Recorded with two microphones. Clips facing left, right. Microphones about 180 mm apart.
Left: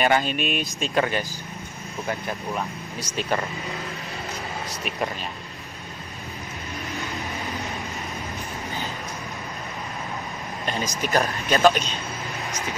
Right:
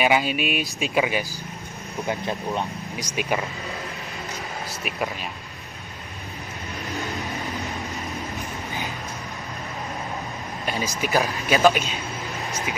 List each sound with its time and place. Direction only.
0.0 s speech: 5° right (ahead or behind)
2.0 s speech: 20° right (ahead or behind)
3.2 s speech: 10° right (ahead or behind)
10.6 s a sound: 10° right (ahead or behind)
11.0 s speech: 10° right (ahead or behind)